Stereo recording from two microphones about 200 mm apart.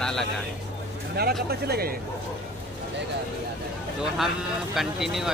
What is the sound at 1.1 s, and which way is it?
Speech, 50° right (ahead or behind).